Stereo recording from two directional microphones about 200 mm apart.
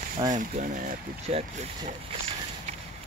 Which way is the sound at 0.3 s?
40° right (ahead or behind).